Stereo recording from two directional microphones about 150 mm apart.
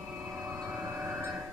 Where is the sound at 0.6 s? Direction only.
15° right (ahead or behind).